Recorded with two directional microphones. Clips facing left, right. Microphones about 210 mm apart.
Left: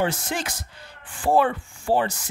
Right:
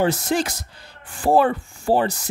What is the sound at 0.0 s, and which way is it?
Speech, 40° right (ahead or behind).